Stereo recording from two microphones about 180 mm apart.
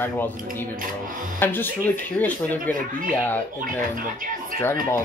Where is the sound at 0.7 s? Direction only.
50° right (ahead or behind).